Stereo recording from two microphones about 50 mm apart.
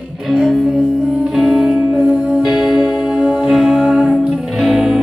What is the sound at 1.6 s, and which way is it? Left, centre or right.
Music, right.